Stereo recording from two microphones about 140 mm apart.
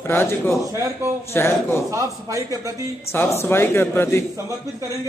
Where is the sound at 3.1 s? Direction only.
20° left (ahead or behind).